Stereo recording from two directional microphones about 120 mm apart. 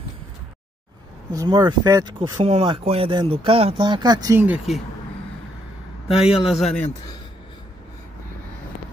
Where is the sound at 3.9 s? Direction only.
35° right (ahead or behind).